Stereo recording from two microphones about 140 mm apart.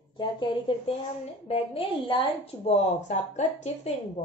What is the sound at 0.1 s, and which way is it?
A woman's voice, 35° left (ahead or behind).